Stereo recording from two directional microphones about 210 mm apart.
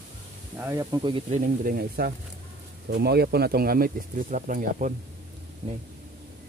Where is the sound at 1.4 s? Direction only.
40° right (ahead or behind).